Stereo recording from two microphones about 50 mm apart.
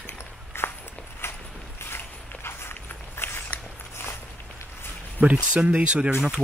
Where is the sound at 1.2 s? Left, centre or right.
Left.